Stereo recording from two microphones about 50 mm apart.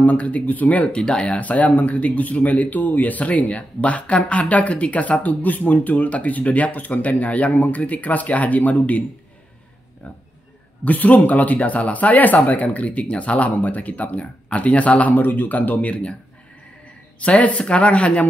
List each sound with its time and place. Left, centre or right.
0.0 s speech: left
10.9 s speech: left
17.2 s speech: left